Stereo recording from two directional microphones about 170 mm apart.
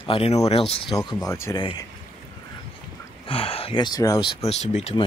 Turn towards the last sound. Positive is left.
turn(degrees=40)  # may be behind; listen again after turning